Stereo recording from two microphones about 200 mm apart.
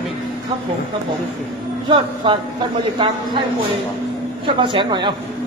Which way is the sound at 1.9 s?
25° right (ahead or behind).